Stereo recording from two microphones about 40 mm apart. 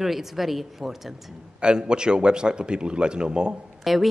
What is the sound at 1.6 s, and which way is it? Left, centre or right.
A man's voice, right.